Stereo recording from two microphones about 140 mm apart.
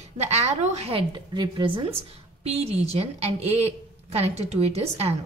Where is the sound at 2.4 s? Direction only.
45° right (ahead or behind).